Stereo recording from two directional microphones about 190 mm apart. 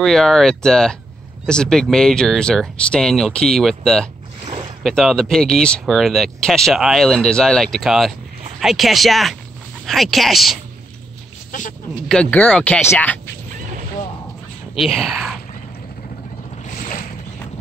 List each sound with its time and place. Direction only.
0.0 s speech: centre (ahead or behind)
12.1 s speech: 5° left (ahead or behind)
14.8 s speech: centre (ahead or behind)
16.7 s boat: 45° left (ahead or behind)